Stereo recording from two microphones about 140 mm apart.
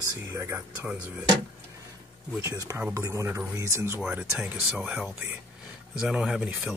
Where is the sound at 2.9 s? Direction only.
20° right (ahead or behind).